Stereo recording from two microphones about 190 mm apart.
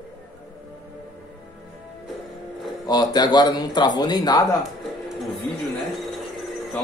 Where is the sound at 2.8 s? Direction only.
20° left (ahead or behind).